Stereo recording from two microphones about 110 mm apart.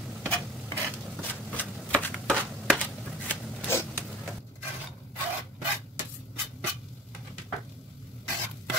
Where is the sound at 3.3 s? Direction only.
20° left (ahead or behind).